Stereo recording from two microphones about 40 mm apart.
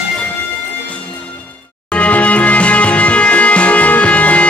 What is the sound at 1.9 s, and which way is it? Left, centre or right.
Music, left.